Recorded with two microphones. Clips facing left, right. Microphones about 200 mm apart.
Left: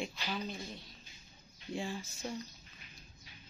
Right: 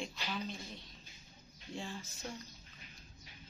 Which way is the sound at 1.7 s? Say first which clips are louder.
Left 5 dB; 10° left (ahead or behind).